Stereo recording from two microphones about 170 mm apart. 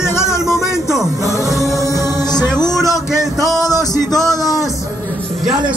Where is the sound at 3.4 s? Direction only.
Centre (ahead or behind).